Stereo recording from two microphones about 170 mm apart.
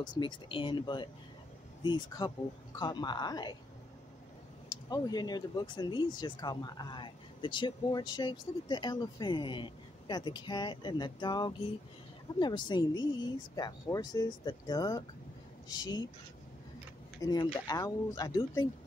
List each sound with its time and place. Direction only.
0.0 s speech: 25° left (ahead or behind)
4.8 s speech: 25° left (ahead or behind)
17.2 s speech: 25° left (ahead or behind)